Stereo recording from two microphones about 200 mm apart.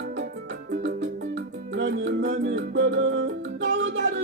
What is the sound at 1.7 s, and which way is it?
Music, 65° right (ahead or behind).